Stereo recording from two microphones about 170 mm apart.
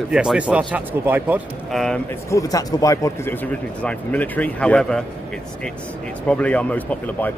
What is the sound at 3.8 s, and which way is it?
Speech, 10° left (ahead or behind).